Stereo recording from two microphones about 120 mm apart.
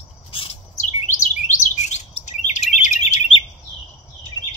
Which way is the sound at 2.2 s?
90° left.